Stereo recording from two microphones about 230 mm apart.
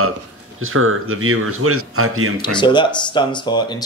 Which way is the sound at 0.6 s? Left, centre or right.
Right.